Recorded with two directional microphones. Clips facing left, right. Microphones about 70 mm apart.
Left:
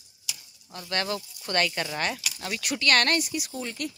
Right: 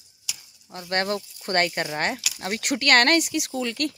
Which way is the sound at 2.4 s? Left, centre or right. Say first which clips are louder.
Right 3 dB; right.